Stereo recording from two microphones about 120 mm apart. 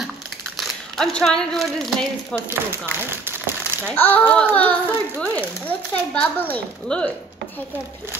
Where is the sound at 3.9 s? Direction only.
15° left (ahead or behind).